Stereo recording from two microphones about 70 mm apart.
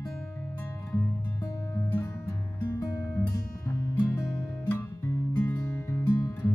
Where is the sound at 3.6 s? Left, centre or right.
Left.